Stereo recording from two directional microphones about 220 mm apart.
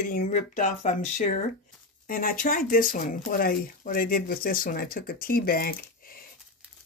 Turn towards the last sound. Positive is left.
turn(degrees=40)  # may be behind; listen again after turning